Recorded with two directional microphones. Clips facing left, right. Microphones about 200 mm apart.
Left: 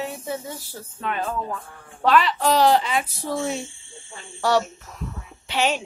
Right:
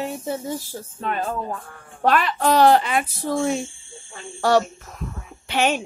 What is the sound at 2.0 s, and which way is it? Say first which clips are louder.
Speech: even; 50° right (ahead or behind).